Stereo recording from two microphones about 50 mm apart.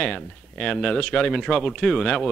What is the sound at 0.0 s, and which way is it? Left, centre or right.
Speech, left.